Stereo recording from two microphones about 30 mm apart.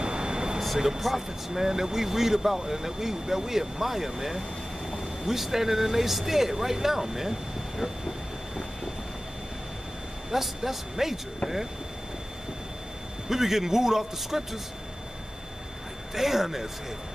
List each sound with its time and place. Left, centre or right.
0.0 s vehicle: right
0.7 s speech: centre
10.3 s speech: centre
13.3 s speech: centre
16.2 s speech: centre